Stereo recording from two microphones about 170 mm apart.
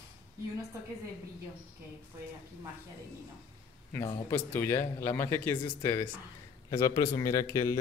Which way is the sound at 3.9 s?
25° left (ahead or behind).